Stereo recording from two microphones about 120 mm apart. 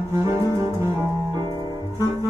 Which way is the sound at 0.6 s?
25° right (ahead or behind).